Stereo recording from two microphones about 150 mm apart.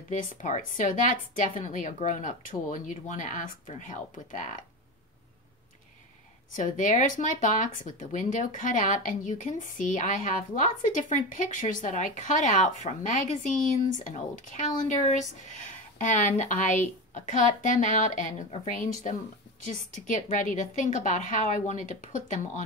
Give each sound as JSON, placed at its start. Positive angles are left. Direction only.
{"t": 0.1, "sound": "speech", "side_deg": 55}
{"t": 6.5, "sound": "speech", "side_deg": 55}